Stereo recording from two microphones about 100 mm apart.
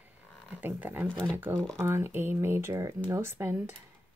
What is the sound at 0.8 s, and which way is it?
Speech, 20° right (ahead or behind).